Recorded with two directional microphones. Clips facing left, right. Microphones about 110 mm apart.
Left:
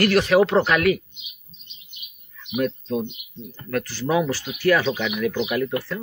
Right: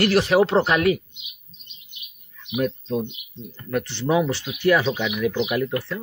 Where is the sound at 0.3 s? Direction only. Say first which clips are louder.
Left 1 dB; 30° right (ahead or behind).